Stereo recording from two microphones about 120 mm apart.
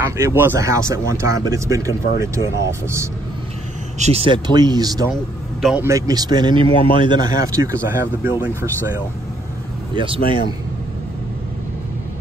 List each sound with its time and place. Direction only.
0.2 s speech: 20° right (ahead or behind)
4.0 s speech: 60° right (ahead or behind)
4.3 s speech: 35° right (ahead or behind); by 8.9 s 20° right (ahead or behind)
9.9 s speech: 50° right (ahead or behind)